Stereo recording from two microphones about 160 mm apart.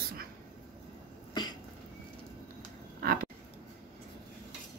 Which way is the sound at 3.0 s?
65° right (ahead or behind).